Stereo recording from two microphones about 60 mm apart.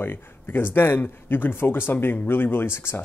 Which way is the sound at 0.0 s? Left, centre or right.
Left.